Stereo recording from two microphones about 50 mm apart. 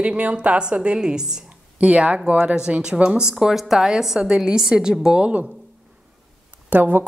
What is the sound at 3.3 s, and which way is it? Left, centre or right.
A woman's voice, centre.